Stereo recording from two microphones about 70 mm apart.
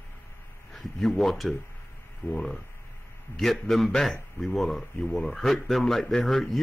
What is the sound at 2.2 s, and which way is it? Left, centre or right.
Speech, left.